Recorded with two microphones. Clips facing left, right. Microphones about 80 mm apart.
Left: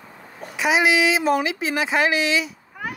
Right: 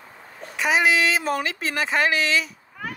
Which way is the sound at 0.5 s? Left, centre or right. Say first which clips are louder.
Left 1 dB; centre.